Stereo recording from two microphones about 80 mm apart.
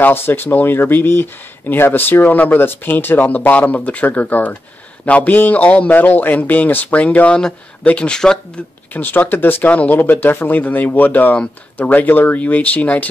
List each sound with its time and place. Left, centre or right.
0.0 s speech: left; by 8.4 s centre
8.9 s speech: left